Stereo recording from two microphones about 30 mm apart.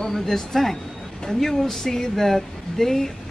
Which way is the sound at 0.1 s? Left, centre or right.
Centre.